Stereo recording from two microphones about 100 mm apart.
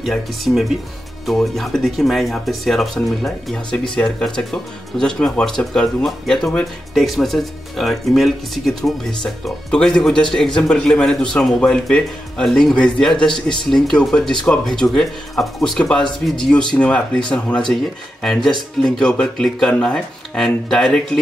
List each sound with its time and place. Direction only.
0.0 s speech: centre (ahead or behind)
18.2 s speech: 5° left (ahead or behind)